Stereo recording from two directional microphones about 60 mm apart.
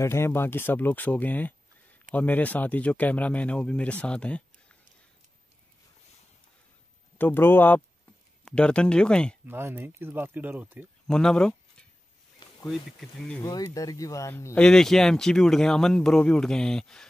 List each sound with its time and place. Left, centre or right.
0.0 s speech: left; by 4.7 s centre
7.2 s speech: left
8.5 s speech: centre
9.5 s speech: right
11.1 s speech: centre
13.4 s speech: left
14.6 s speech: centre